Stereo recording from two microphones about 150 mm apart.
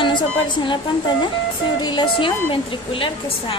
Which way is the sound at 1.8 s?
30° left (ahead or behind).